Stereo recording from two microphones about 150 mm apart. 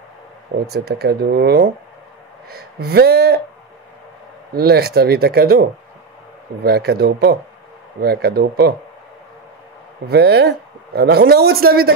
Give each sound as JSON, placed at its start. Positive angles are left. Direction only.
{"t": 0.7, "sound": "speech", "side_deg": -90}
{"t": 4.6, "sound": "speech", "side_deg": -90}
{"t": 10.0, "sound": "speech", "side_deg": -90}